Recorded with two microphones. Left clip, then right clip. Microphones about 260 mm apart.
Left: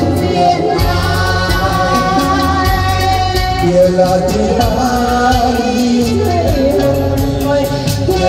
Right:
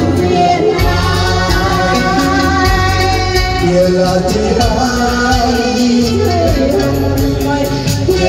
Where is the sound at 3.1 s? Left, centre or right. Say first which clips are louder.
Even; left.